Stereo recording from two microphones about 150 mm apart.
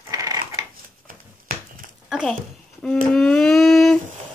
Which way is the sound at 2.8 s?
5° left (ahead or behind).